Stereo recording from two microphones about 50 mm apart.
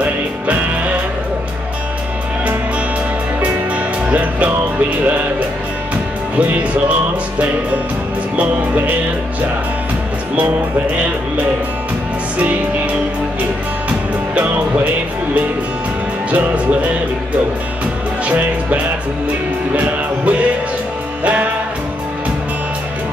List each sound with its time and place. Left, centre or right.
0.0 s music: right
3.4 s music: right
6.3 s music: right
16.3 s music: right
18.2 s music: right